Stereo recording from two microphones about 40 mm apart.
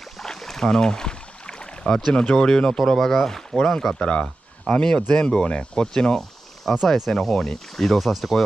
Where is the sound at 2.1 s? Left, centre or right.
Left.